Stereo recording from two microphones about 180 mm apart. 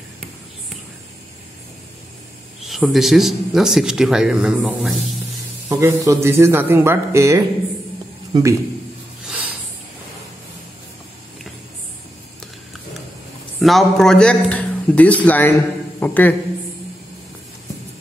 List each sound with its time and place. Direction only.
2.6 s speech: centre (ahead or behind)
5.7 s a man's voice: 15° right (ahead or behind)
13.6 s a man's voice: centre (ahead or behind)